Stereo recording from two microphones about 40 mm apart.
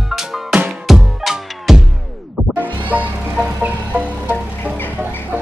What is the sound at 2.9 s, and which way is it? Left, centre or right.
Music, right.